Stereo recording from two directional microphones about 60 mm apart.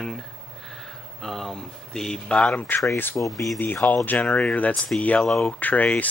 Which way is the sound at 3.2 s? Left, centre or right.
Left.